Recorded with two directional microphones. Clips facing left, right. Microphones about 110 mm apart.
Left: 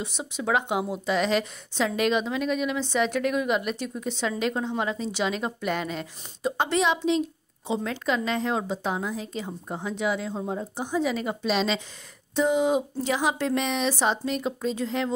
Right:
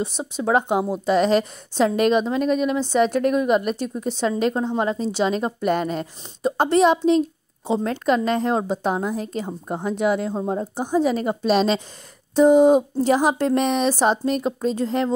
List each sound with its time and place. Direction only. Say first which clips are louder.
0.0 s a woman's voice: right 6 dB; 35° right (ahead or behind)